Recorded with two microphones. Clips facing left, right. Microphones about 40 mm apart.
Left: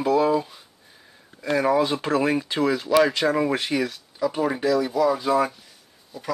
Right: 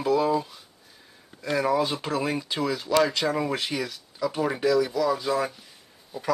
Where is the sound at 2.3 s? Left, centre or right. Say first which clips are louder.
Left 5 dB; left.